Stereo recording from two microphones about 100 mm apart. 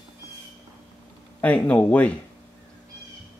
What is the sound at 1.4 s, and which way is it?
Speech, 15° left (ahead or behind).